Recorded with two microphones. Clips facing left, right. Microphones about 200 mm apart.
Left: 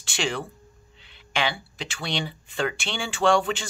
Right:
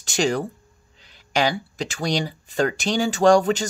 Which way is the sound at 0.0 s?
40° right (ahead or behind).